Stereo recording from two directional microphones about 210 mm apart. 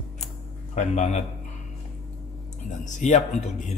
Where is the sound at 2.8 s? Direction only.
35° left (ahead or behind).